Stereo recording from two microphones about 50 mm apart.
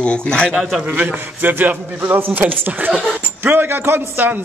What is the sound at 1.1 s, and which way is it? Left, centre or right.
A man's voice, right.